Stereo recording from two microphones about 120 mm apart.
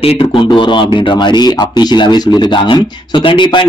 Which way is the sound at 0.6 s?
45° left (ahead or behind).